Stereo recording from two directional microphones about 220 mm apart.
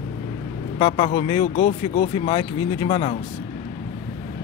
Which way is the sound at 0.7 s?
25° left (ahead or behind).